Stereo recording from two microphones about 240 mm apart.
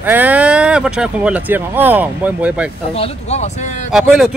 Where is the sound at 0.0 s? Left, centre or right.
Centre.